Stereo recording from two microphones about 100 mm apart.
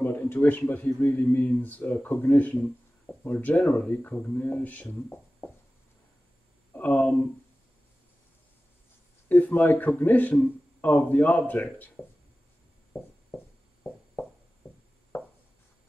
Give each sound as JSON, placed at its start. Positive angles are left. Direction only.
{"t": 0.0, "sound": "speech", "side_deg": 20}
{"t": 6.7, "sound": "speech", "side_deg": 15}
{"t": 9.3, "sound": "speech", "side_deg": 20}